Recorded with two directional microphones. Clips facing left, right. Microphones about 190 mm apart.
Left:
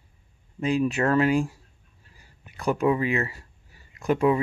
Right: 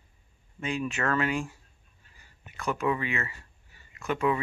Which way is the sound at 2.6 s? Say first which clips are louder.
Left 6 dB; 35° left (ahead or behind).